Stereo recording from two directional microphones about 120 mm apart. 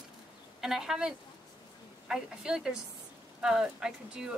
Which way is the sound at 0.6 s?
5° right (ahead or behind).